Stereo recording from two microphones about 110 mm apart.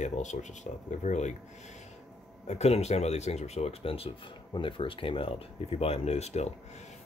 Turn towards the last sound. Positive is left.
turn(degrees=80)